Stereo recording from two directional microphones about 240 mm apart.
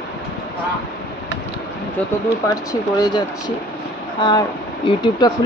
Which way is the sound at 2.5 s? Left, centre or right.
Centre.